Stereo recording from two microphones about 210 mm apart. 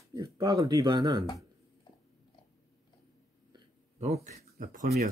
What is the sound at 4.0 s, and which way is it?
Speech, 30° right (ahead or behind).